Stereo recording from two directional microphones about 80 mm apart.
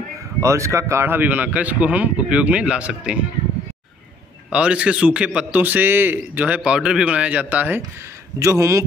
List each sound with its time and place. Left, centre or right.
0.4 s speech: right; by 3.2 s centre
4.5 s a man's voice: centre
8.4 s speech: right